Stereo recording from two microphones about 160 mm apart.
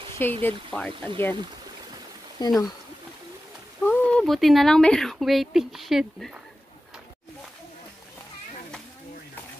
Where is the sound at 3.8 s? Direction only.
10° left (ahead or behind).